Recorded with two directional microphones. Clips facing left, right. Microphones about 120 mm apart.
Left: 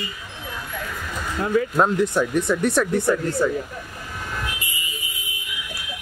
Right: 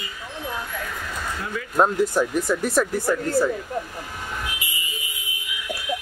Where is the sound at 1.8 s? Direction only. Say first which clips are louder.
Right 4 dB; 5° right (ahead or behind).